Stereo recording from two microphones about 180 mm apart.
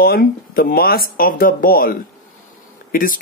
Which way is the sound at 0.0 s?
55° left (ahead or behind).